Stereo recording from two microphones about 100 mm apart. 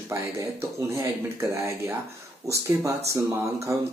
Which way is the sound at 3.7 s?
30° right (ahead or behind).